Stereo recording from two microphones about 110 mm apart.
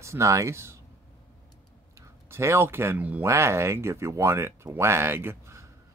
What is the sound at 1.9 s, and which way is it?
Speech, 25° right (ahead or behind).